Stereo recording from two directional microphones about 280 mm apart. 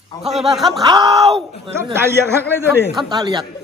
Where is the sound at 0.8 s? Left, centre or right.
Centre.